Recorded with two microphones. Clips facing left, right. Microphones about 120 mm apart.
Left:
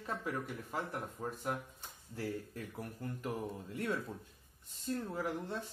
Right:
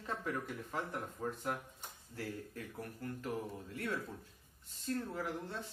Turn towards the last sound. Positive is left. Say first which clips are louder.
# left 2 dB
turn(degrees=15)  # may be behind; listen again after turning